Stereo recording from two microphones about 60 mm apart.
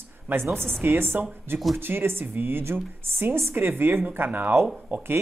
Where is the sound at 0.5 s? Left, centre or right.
Centre.